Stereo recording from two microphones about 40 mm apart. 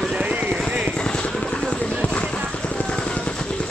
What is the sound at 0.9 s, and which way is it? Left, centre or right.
Vehicle, left.